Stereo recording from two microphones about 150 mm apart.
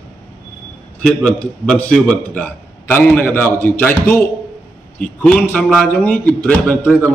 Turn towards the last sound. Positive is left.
turn(degrees=10)  # may be behind; listen again after turning